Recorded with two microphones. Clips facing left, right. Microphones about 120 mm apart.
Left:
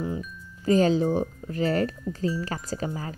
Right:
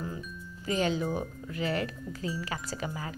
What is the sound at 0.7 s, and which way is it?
A woman's voice, 35° left (ahead or behind).